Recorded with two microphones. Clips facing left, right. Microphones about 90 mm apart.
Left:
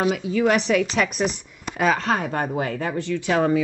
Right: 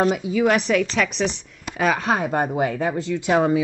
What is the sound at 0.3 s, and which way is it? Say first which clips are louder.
Speech: right 1 dB; 5° right (ahead or behind).